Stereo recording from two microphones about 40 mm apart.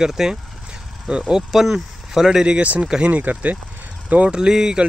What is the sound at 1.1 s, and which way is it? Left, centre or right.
Speech, right.